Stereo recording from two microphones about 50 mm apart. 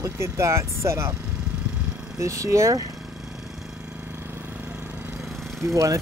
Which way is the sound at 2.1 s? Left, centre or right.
Right.